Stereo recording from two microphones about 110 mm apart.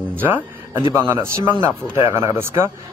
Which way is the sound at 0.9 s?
25° right (ahead or behind).